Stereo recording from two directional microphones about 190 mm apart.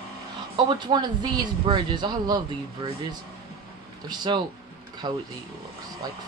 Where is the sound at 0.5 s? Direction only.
25° right (ahead or behind).